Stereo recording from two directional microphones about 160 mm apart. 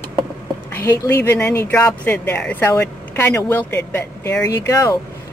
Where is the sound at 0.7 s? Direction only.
15° left (ahead or behind).